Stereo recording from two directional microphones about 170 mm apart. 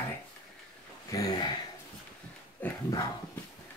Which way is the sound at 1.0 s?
20° left (ahead or behind).